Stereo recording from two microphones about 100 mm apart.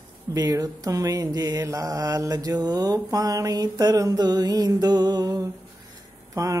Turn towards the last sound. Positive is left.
turn(degrees=-30)  # may be behind; listen again after turning